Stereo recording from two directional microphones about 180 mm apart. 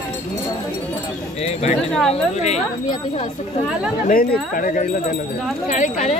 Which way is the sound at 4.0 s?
50° left (ahead or behind).